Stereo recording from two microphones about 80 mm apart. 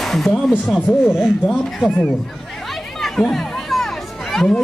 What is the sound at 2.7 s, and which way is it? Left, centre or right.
Music, centre.